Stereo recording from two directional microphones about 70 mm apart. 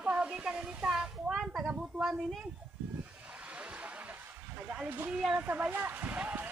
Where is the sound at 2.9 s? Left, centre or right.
Centre.